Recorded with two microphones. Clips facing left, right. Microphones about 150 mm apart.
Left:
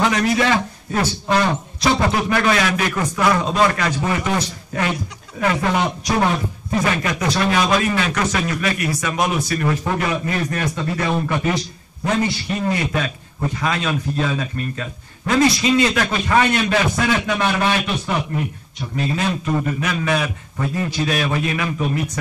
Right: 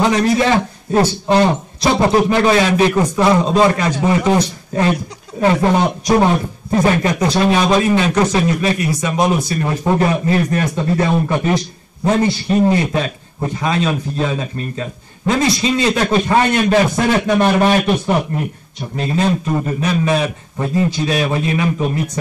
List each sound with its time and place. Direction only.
0.0 s a man's voice: 30° right (ahead or behind); by 18.2 s 45° right (ahead or behind)
18.9 s a man's voice: 35° right (ahead or behind)